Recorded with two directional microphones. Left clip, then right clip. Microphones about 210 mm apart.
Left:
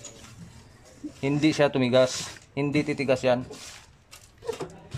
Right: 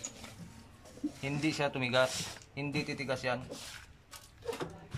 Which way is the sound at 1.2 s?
30° left (ahead or behind).